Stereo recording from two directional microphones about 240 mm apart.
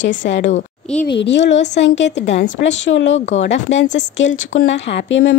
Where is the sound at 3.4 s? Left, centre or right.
Left.